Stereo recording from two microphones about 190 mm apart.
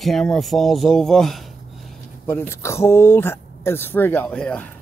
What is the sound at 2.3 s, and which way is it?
Speech, 10° left (ahead or behind).